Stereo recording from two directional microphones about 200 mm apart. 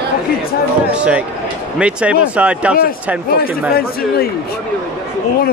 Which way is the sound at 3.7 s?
50° left (ahead or behind).